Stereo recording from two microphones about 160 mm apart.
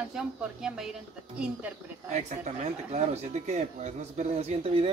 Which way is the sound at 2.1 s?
45° right (ahead or behind).